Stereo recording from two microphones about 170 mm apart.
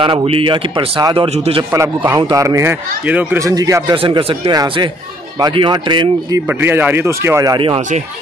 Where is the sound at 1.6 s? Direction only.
15° right (ahead or behind).